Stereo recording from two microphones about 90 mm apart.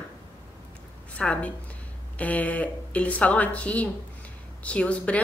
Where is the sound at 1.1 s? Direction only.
15° left (ahead or behind).